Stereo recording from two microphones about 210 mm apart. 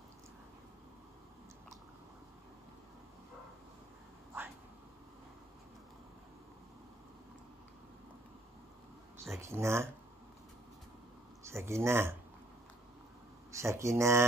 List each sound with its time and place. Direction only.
9.2 s speech: 15° right (ahead or behind)
11.5 s speech: 15° right (ahead or behind)
13.5 s speech: 15° right (ahead or behind)